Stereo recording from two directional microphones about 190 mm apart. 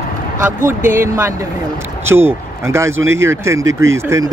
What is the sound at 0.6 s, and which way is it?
Speech, 10° right (ahead or behind).